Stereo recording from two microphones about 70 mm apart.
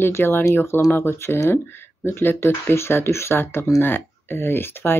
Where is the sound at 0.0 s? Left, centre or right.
Left.